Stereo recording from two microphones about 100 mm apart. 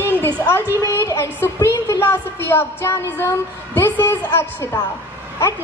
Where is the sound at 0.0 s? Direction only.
25° left (ahead or behind).